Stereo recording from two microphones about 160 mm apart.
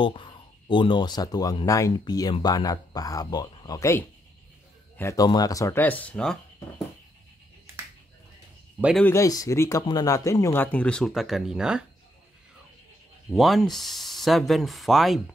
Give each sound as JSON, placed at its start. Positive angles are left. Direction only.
{"t": 0.0, "sound": "speech", "side_deg": 30}
{"t": 9.1, "sound": "speech", "side_deg": 20}
{"t": 13.3, "sound": "speech", "side_deg": 0}